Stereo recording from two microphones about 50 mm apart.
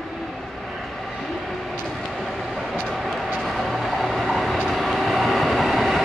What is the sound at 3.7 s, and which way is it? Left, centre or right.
Train, centre.